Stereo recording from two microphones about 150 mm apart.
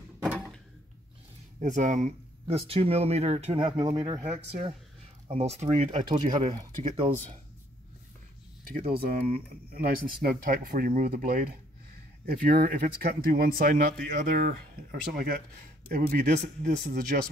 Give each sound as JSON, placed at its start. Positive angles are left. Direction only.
{"t": 1.6, "sound": "speech", "side_deg": -55}
{"t": 2.4, "sound": "speech", "side_deg": -40}
{"t": 4.2, "sound": "speech", "side_deg": -50}
{"t": 6.6, "sound": "speech", "side_deg": -35}
{"t": 9.0, "sound": "speech", "side_deg": -85}